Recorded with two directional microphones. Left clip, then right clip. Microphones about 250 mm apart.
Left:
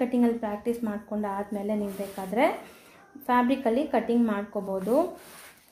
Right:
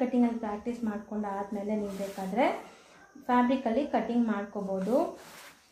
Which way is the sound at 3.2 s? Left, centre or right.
Left.